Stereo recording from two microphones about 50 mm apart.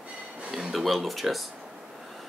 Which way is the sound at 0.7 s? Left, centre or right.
Centre.